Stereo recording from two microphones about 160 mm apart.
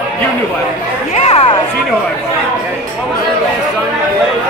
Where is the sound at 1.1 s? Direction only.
40° left (ahead or behind).